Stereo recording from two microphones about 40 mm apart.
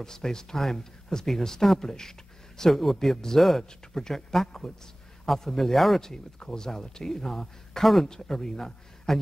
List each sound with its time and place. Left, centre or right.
0.0 s speech: centre
4.5 s a man's voice: centre
5.2 s speech: centre